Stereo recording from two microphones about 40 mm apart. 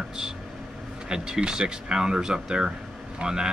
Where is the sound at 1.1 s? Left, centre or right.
Right.